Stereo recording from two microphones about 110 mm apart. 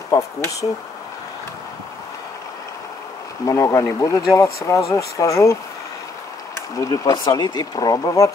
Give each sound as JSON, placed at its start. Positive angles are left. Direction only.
{"t": 0.1, "sound": "speech", "side_deg": 30}
{"t": 3.4, "sound": "speech", "side_deg": 25}
{"t": 6.8, "sound": "speech", "side_deg": 35}